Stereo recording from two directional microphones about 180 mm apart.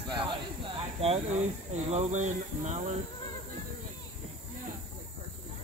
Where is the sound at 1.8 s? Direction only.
40° right (ahead or behind).